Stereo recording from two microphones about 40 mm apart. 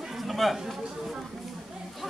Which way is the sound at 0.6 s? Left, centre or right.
Centre.